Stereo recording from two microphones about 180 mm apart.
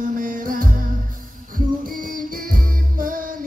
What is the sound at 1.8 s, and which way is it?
Music, 50° right (ahead or behind).